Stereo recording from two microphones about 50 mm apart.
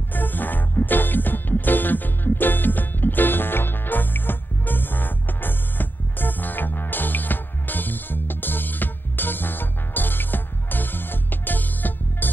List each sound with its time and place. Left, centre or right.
0.1 s music: left